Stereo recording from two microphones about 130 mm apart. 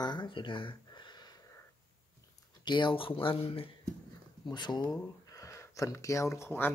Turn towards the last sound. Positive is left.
turn(degrees=20)  # may be behind; listen again after turning